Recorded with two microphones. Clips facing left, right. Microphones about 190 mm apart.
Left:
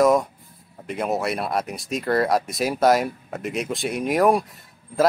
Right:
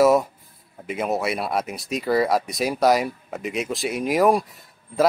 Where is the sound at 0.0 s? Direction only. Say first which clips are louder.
Right 1 dB; 5° right (ahead or behind).